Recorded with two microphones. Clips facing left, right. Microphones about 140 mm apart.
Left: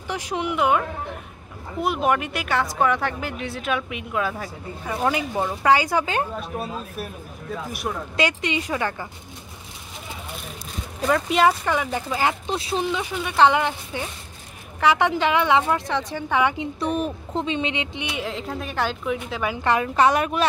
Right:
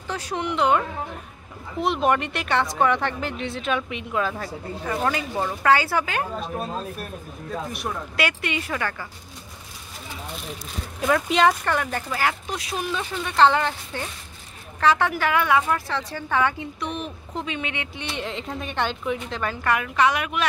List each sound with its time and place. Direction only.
0.1 s a woman's voice: 10° left (ahead or behind)
7.7 s a woman's voice: centre (ahead or behind)
8.2 s speech: 20° left (ahead or behind)
11.0 s speech: centre (ahead or behind); by 12.9 s 25° left (ahead or behind)
12.9 s speech: 10° left (ahead or behind)
16.8 s a woman's voice: 40° left (ahead or behind)
17.4 s speech: 25° left (ahead or behind)
18.1 s a woman's voice: 5° left (ahead or behind)
19.6 s a woman's voice: 30° left (ahead or behind)